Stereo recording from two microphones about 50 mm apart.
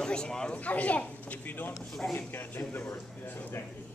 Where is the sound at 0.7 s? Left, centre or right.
Left.